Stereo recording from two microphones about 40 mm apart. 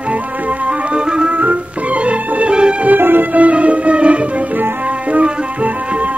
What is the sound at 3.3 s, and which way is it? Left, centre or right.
Music, right.